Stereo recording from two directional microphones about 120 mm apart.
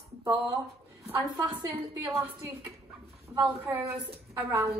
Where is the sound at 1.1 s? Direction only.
25° right (ahead or behind).